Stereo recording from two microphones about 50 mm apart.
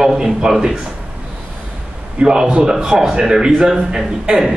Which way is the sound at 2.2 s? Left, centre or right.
Centre.